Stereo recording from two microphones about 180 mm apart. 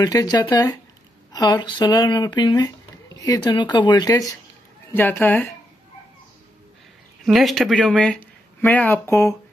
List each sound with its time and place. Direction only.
0.0 s a woman's voice: 20° left (ahead or behind)
7.2 s speech: centre (ahead or behind)